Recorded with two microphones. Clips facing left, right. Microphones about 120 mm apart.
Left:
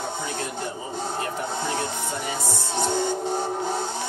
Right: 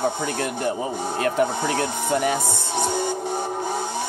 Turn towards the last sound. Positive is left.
turn(degrees=-15)  # may be behind; listen again after turning